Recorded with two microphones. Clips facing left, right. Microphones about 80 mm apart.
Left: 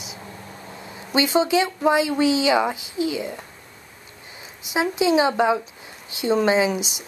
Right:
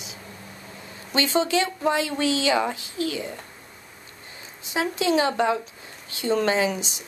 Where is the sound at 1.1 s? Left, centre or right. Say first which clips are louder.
Left 3 dB; centre.